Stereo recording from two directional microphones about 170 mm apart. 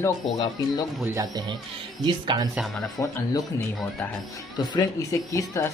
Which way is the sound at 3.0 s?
15° left (ahead or behind).